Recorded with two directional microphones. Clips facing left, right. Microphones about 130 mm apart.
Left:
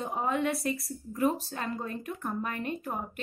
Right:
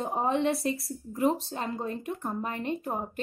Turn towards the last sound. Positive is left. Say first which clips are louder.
# right 3 dB
turn(degrees=-25)  # may be behind; listen again after turning